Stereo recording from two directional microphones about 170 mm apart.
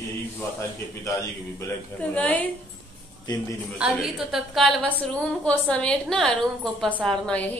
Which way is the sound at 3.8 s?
5° right (ahead or behind).